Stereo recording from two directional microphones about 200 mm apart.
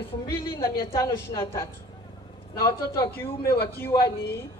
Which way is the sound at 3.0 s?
10° left (ahead or behind).